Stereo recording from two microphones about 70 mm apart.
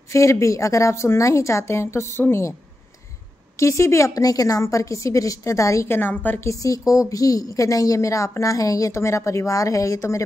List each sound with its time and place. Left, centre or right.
0.1 s a woman's voice: left
3.5 s a woman's voice: left
5.9 s a woman's voice: left
6.4 s a woman's voice: left